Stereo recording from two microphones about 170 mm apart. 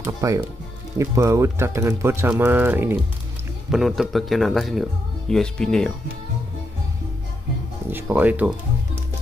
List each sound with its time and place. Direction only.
0.0 s speech: 20° right (ahead or behind)
3.7 s a man's voice: centre (ahead or behind)
7.9 s speech: 10° right (ahead or behind)